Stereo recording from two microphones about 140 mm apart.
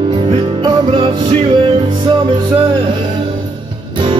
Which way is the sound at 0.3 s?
40° right (ahead or behind).